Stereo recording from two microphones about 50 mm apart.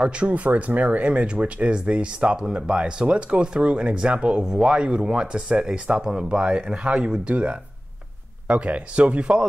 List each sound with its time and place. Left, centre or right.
0.1 s speech: right